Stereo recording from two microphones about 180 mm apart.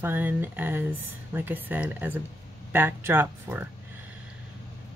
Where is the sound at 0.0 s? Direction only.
10° right (ahead or behind).